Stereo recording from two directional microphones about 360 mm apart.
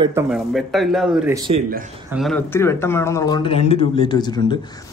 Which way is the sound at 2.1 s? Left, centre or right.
Centre.